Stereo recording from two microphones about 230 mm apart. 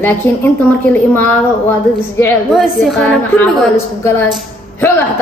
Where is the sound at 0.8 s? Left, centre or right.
Centre.